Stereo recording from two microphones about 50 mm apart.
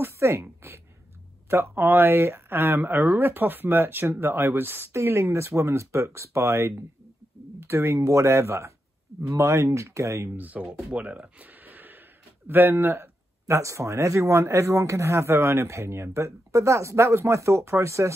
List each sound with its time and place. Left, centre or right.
0.0 s a woman's voice: right
4.9 s speech: right
9.3 s speech: right
10.3 s speech: right
10.6 s speech: centre
11.0 s a sound: right
12.4 s speech: right
13.5 s speech: right